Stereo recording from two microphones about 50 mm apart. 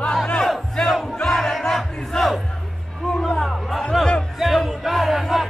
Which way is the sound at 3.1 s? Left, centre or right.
Centre.